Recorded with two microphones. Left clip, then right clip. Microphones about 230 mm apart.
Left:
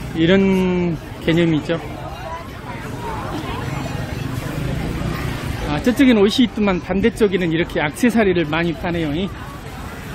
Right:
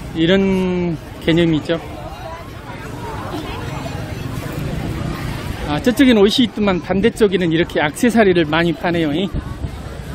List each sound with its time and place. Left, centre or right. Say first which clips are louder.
0.2 s speech: even; centre
1.2 s a man's voice: right 2 dB; centre
5.7 s speech: right 2 dB; right